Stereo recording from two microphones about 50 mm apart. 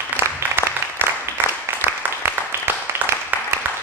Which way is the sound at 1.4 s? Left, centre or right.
Right.